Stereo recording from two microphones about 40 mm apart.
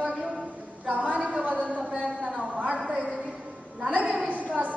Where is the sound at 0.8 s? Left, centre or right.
Right.